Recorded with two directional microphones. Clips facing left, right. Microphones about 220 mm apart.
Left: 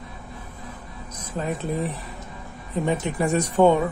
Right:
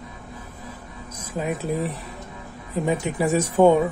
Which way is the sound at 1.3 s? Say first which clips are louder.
Right 1 dB; 10° right (ahead or behind).